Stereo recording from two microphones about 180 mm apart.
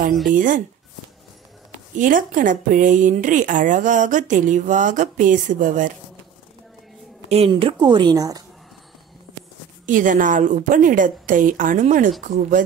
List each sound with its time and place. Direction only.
0.3 s speech: 45° right (ahead or behind)
2.0 s speech: 45° right (ahead or behind)
7.2 s speech: 35° right (ahead or behind)
9.8 s speech: 45° right (ahead or behind)